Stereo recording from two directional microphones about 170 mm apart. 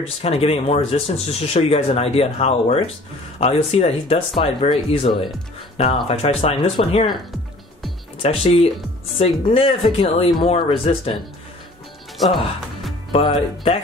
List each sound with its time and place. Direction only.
0.0 s speech: 35° left (ahead or behind)
8.2 s speech: 35° left (ahead or behind)
13.1 s speech: 30° left (ahead or behind)